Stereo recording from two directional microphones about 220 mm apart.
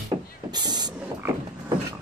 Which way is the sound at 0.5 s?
20° right (ahead or behind).